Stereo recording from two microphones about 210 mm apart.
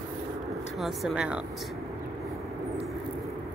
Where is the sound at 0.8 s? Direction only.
Centre (ahead or behind).